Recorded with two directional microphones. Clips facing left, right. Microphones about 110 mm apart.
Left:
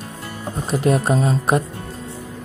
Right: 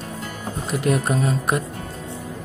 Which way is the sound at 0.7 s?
30° left (ahead or behind).